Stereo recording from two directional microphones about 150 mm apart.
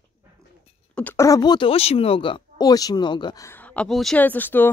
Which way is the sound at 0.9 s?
10° left (ahead or behind).